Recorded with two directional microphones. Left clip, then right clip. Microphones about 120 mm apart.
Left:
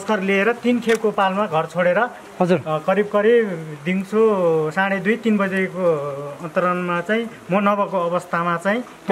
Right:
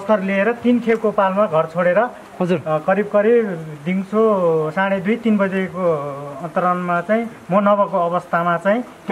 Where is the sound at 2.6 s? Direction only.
10° left (ahead or behind).